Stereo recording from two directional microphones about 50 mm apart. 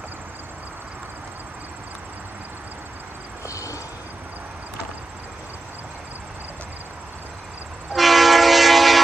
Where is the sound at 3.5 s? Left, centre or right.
Left.